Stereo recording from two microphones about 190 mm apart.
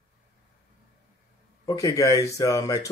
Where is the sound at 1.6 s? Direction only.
20° left (ahead or behind).